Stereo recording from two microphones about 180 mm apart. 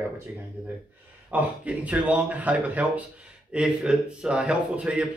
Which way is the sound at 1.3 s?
10° right (ahead or behind).